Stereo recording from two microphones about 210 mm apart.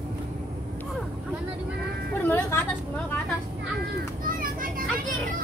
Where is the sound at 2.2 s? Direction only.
10° left (ahead or behind).